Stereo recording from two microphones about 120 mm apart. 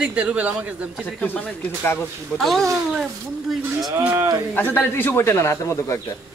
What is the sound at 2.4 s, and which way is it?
Speech, centre (ahead or behind).